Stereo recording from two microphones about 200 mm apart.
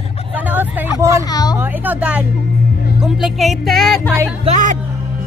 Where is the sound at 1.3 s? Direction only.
20° left (ahead or behind).